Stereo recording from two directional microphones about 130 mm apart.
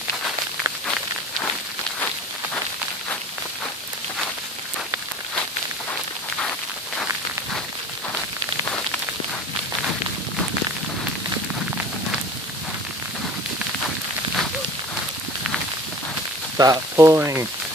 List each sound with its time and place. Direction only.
16.5 s speech: 30° right (ahead or behind)